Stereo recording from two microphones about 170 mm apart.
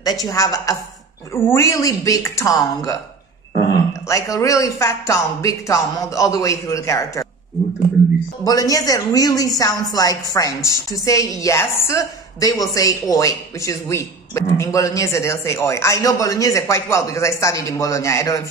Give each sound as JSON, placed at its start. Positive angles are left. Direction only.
{"t": 0.0, "sound": "a man's voice", "side_deg": 20}
{"t": 4.1, "sound": "a man's voice", "side_deg": 20}
{"t": 8.5, "sound": "a man's voice", "side_deg": 20}